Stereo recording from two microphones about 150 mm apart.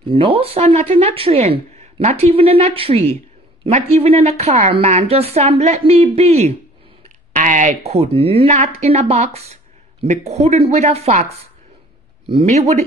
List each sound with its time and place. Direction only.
0.1 s a woman's voice: 40° right (ahead or behind)
7.3 s a woman's voice: 55° right (ahead or behind)